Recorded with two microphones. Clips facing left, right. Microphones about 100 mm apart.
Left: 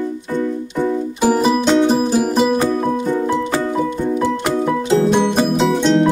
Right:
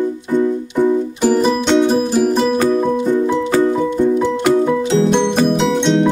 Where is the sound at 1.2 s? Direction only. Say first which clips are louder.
Left 2 dB; 5° left (ahead or behind).